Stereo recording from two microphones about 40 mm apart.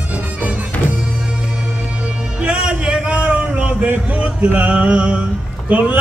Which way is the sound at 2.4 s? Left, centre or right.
Right.